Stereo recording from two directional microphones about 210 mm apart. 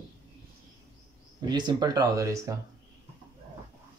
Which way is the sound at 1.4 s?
20° right (ahead or behind).